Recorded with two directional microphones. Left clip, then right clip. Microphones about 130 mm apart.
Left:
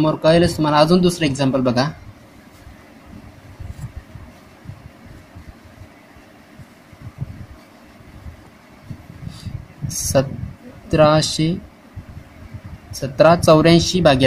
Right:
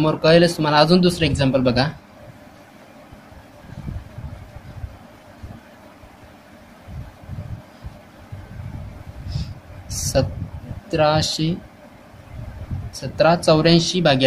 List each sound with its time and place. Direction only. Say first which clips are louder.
0.0 s speech: even; 25° left (ahead or behind)
10.1 s speech: left 3 dB; 40° left (ahead or behind)
12.9 s speech: left 4 dB; 45° left (ahead or behind)